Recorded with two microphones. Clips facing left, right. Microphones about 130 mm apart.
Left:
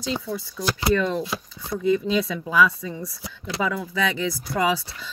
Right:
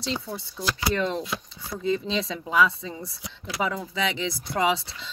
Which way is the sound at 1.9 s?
25° right (ahead or behind).